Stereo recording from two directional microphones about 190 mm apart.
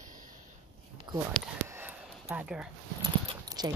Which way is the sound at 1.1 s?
25° right (ahead or behind).